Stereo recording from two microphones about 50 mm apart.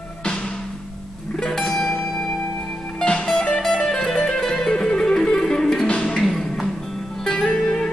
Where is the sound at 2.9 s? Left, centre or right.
Centre.